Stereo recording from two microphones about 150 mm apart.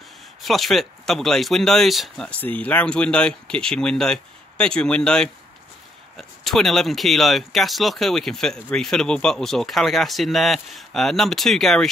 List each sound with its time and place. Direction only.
0.4 s speech: centre (ahead or behind)